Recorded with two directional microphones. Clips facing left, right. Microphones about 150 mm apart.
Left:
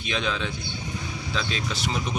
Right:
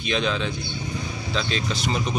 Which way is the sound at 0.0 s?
Centre (ahead or behind).